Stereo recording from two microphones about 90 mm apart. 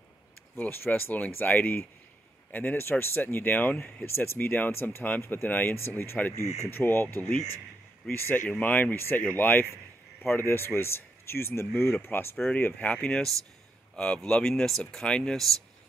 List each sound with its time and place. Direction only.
0.6 s speech: 20° left (ahead or behind); by 15.5 s 5° left (ahead or behind)